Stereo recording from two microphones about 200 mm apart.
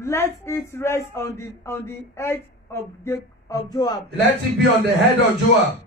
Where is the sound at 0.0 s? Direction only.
15° left (ahead or behind).